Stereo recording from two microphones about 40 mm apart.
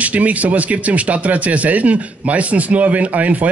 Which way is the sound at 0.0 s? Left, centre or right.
Right.